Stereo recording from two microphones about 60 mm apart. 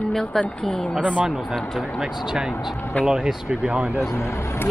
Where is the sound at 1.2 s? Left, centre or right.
Centre.